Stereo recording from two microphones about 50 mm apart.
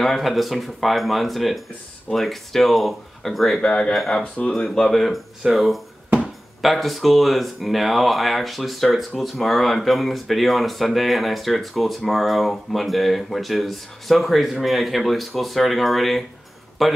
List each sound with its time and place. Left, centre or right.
0.0 s speech: centre
3.6 s speech: centre
4.6 s speech: centre